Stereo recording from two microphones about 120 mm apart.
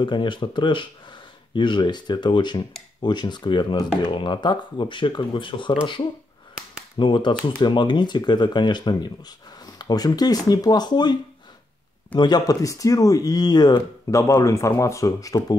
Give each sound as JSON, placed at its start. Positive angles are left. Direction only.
{"t": 0.0, "sound": "speech", "side_deg": 40}
{"t": 7.0, "sound": "speech", "side_deg": 40}
{"t": 12.2, "sound": "speech", "side_deg": 35}